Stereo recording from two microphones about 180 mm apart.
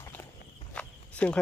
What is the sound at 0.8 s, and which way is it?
Walk, 5° left (ahead or behind).